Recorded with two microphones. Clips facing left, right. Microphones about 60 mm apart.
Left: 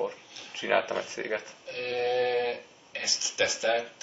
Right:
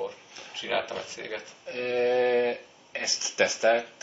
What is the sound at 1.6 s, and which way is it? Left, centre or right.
Speech, right.